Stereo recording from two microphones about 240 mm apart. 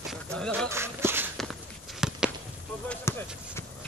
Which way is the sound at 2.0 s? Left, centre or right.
Centre.